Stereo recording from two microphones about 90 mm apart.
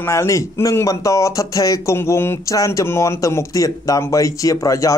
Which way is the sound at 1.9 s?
30° left (ahead or behind).